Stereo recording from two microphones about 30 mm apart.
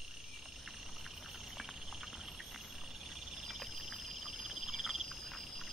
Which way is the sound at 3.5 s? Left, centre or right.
Centre.